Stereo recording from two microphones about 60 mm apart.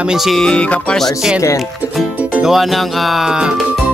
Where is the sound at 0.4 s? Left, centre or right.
Centre.